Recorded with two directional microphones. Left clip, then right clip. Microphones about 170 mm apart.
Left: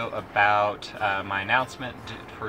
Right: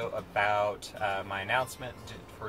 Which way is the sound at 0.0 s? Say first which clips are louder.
Left 7 dB; 10° right (ahead or behind).